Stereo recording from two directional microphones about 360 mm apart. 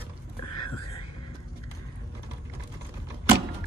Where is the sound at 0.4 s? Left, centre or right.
Left.